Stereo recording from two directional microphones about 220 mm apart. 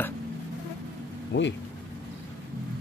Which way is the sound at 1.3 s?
60° left (ahead or behind).